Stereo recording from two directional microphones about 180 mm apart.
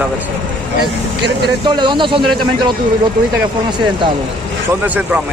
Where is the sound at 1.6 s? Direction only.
25° right (ahead or behind).